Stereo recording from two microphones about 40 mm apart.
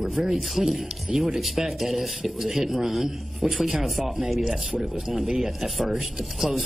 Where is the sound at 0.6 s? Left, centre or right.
Centre.